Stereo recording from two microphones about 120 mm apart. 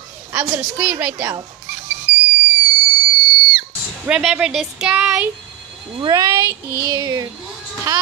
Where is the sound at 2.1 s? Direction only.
10° right (ahead or behind).